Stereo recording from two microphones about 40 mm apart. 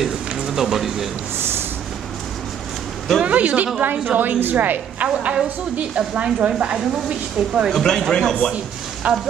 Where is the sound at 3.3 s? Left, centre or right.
Right.